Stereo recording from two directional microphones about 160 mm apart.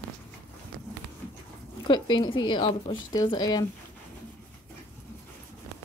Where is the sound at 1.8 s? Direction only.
30° left (ahead or behind).